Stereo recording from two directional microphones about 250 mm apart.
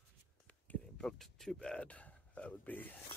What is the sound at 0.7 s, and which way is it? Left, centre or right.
A man's voice, centre.